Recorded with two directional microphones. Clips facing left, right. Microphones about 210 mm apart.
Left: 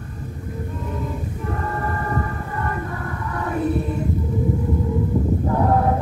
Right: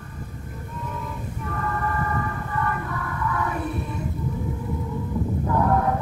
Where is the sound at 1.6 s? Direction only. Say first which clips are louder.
Right 2 dB; 35° left (ahead or behind).